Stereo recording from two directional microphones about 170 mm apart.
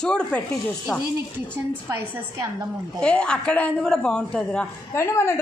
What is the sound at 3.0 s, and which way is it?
Speech, 5° left (ahead or behind).